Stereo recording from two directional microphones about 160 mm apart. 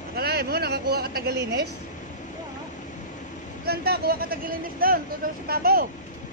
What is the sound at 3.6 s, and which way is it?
Speech, 75° right (ahead or behind).